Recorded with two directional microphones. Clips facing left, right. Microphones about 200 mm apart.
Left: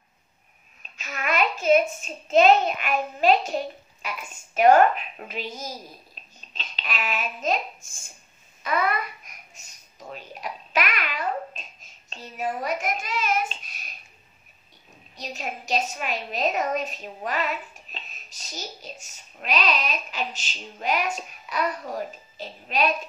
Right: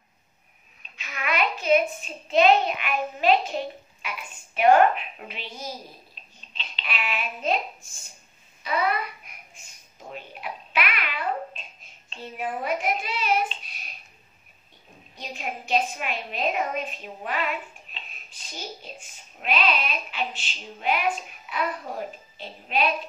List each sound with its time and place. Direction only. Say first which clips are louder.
0.9 s a child's voice: left 2 dB; 45° left (ahead or behind)
6.2 s a sound: left 2 dB; 45° left (ahead or behind)
6.5 s a child's voice: left 1 dB; 40° left (ahead or behind)
8.6 s babbling: even; 45° left (ahead or behind)
15.1 s a woman's voice: left 1 dB; 40° left (ahead or behind)